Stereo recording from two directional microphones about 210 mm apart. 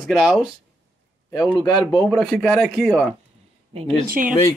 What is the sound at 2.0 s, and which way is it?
Speech, centre (ahead or behind).